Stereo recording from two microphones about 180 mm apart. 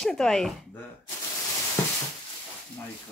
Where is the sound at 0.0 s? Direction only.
Centre (ahead or behind).